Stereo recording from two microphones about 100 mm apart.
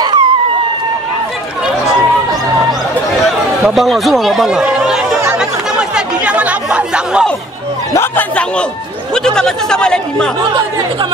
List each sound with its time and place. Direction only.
0.0 s a sound: 50° right (ahead or behind)
3.3 s speech: centre (ahead or behind)
5.4 s chatter: 10° right (ahead or behind)
7.9 s speech: 25° left (ahead or behind)
9.1 s speech: 5° left (ahead or behind)